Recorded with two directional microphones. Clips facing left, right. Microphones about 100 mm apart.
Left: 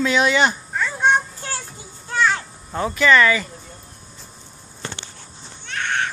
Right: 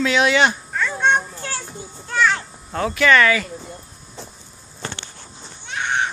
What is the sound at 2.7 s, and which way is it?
Speech, 5° left (ahead or behind).